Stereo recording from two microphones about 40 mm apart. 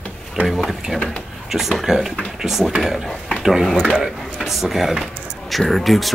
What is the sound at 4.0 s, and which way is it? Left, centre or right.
Speech, centre.